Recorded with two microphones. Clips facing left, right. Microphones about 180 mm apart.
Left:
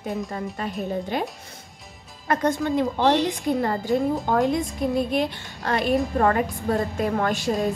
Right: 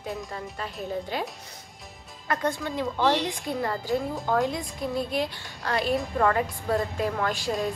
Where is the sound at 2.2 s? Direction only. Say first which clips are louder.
Left 6 dB; 45° left (ahead or behind).